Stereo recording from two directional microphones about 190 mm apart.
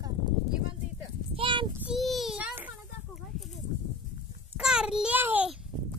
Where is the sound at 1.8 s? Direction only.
Centre (ahead or behind).